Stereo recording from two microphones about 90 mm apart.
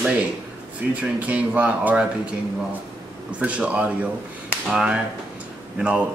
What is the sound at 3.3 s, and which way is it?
Speech, 15° right (ahead or behind).